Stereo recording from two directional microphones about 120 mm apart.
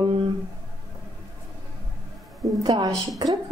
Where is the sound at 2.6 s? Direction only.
30° right (ahead or behind).